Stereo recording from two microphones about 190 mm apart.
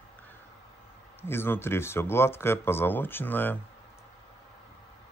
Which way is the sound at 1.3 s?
10° left (ahead or behind).